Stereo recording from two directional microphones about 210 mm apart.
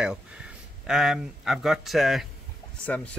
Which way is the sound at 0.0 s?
5° right (ahead or behind).